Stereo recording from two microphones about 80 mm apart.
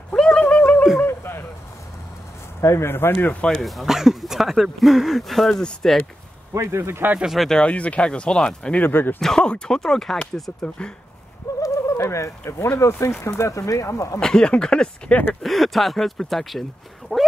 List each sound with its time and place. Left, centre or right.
0.1 s a sound: centre; by 1.4 s left
2.6 s speech: left
3.4 s speech: centre
6.5 s a man's voice: right
7.2 s speech: centre
8.8 s speech: left
9.2 s speech: centre
11.6 s speech: left
14.2 s speech: centre
15.4 s speech: centre